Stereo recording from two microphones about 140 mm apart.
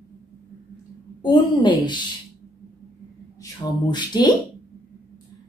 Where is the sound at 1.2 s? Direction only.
35° left (ahead or behind).